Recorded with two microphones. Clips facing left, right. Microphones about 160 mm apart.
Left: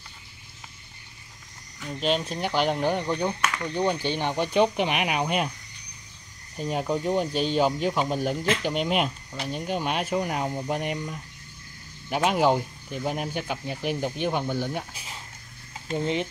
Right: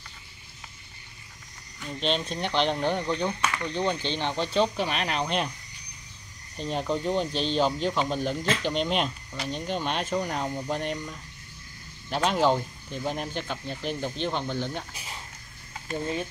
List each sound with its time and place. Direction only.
1.8 s speech: 5° left (ahead or behind)
6.6 s speech: 10° left (ahead or behind)
15.9 s speech: 20° left (ahead or behind)